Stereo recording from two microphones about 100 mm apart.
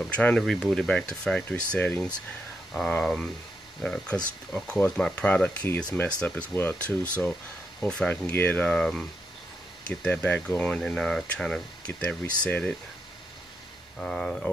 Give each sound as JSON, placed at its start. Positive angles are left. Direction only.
{"t": 0.0, "sound": "speech", "side_deg": 10}
{"t": 0.4, "sound": "speech", "side_deg": 0}
{"t": 8.6, "sound": "speech", "side_deg": 5}
{"t": 12.0, "sound": "speech", "side_deg": 15}
{"t": 13.9, "sound": "speech", "side_deg": 5}